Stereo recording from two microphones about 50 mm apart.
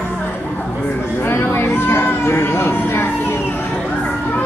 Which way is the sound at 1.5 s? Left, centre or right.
Left.